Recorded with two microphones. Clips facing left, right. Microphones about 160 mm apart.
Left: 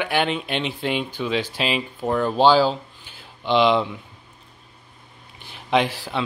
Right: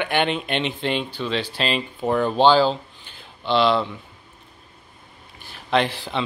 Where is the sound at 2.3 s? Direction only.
10° left (ahead or behind).